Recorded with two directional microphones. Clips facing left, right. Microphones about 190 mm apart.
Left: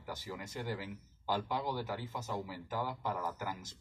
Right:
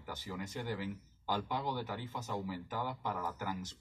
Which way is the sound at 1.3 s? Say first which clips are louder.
Left 1 dB; 10° left (ahead or behind).